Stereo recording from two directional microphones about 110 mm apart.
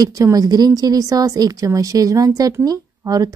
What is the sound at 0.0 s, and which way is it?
A woman's voice, 35° right (ahead or behind).